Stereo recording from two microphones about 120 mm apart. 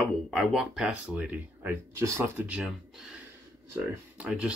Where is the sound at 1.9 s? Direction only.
25° right (ahead or behind).